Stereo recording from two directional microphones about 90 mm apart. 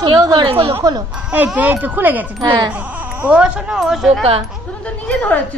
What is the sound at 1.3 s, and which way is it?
A child's voice, 15° right (ahead or behind).